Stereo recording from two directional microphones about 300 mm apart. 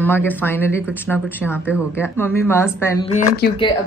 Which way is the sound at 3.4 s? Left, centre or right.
Left.